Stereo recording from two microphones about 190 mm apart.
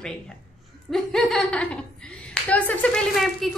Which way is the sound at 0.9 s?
Centre (ahead or behind).